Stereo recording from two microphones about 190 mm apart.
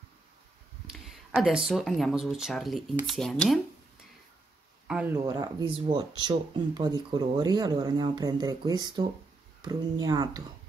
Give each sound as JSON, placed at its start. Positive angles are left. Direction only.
{"t": 0.8, "sound": "speech", "side_deg": 0}
{"t": 4.8, "sound": "speech", "side_deg": -5}
{"t": 5.1, "sound": "speech", "side_deg": -20}